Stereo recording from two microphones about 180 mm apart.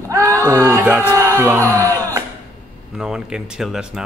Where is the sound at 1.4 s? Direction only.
15° right (ahead or behind).